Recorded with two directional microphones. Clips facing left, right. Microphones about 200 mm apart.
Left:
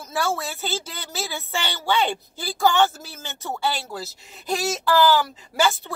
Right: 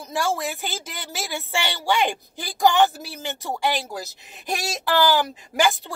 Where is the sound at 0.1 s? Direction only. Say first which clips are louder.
Right 1 dB; 15° right (ahead or behind).